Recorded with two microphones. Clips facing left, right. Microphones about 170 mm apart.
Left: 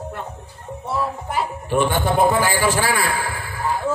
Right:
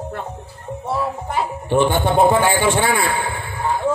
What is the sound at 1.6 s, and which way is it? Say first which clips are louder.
A man's voice: right 3 dB; 25° right (ahead or behind).